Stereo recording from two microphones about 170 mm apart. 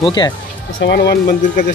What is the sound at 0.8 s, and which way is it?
Speech, 70° left (ahead or behind).